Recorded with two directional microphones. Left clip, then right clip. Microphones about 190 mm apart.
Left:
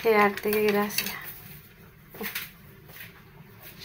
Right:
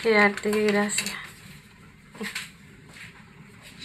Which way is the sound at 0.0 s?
5° left (ahead or behind).